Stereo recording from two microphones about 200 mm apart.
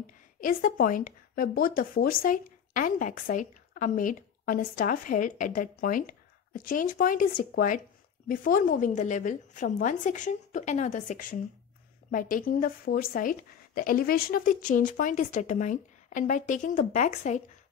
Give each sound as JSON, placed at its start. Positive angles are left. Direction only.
{"t": 0.0, "sound": "a woman's voice", "side_deg": 45}